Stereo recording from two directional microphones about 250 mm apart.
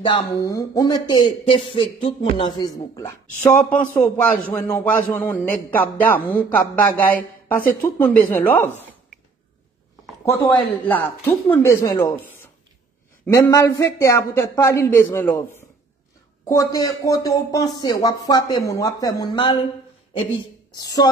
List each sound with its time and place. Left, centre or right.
0.0 s speech: centre
10.2 s speech: centre
13.3 s speech: centre
16.4 s speech: centre
21.0 s speech: centre